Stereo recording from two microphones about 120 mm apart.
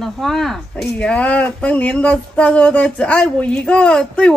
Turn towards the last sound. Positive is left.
turn(degrees=10)  # may be behind; listen again after turning